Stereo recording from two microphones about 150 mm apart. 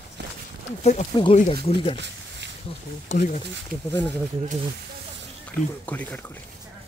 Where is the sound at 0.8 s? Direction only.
50° left (ahead or behind).